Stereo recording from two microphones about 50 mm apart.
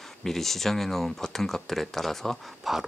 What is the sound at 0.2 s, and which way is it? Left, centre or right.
Speech, centre.